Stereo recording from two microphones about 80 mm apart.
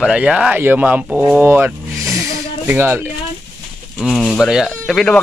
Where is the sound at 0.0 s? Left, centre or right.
Centre; by 3.0 s right.